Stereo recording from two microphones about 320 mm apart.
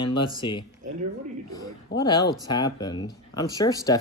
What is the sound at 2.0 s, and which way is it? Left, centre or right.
Speech, centre.